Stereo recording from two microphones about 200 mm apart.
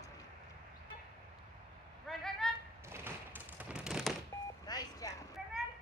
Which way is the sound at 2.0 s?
Centre (ahead or behind).